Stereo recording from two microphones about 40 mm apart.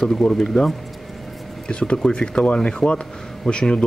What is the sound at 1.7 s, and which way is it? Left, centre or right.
Speech, left.